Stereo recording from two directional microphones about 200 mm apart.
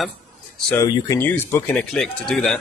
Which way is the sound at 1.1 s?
15° left (ahead or behind).